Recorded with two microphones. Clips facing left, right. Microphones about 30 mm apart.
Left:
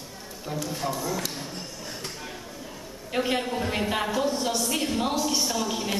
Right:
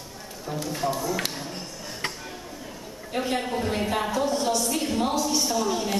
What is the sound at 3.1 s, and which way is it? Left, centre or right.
Speech, centre.